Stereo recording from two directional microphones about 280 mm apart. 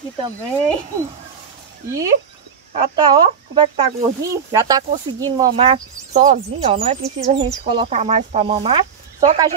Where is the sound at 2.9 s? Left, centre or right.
Centre.